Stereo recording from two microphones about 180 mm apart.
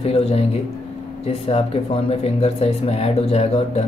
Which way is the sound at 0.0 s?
35° left (ahead or behind).